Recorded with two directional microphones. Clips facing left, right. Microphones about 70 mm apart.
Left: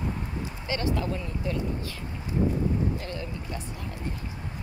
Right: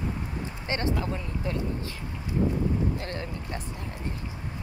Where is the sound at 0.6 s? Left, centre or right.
Right.